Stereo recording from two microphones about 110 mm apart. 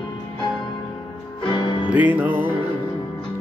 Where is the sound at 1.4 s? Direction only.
45° left (ahead or behind).